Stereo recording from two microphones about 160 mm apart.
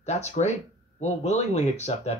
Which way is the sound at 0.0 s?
45° left (ahead or behind).